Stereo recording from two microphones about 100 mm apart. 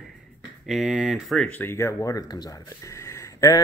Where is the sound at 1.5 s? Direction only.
20° left (ahead or behind).